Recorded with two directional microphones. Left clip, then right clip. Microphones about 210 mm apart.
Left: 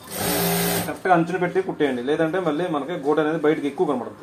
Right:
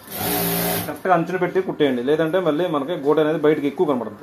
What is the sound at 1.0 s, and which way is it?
A man's voice, 30° right (ahead or behind).